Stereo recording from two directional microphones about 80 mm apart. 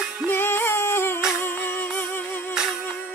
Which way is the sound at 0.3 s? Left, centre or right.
Left.